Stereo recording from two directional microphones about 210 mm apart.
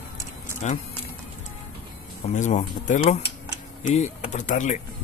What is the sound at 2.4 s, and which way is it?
Speech, 35° left (ahead or behind).